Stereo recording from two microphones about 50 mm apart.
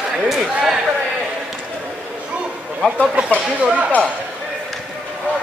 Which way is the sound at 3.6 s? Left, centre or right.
Right.